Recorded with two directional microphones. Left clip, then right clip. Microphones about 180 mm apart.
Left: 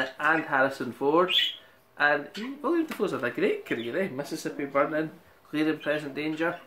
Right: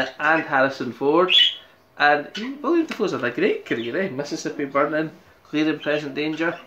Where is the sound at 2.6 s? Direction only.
10° left (ahead or behind).